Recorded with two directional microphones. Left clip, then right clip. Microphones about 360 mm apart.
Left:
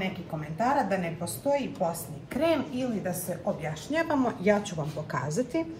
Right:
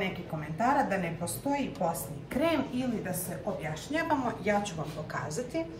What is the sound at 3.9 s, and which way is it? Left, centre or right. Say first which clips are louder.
Speech: left 3 dB; centre.